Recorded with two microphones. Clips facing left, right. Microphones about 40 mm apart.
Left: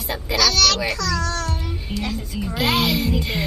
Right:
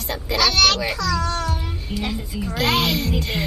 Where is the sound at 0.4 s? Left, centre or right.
Centre.